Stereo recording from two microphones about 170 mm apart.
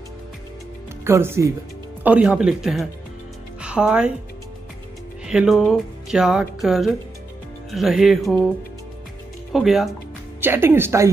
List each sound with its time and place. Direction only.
1.0 s speech: 15° right (ahead or behind)
2.0 s speech: 5° right (ahead or behind)
5.2 s speech: 5° right (ahead or behind)
9.5 s speech: centre (ahead or behind)
10.4 s speech: 15° right (ahead or behind)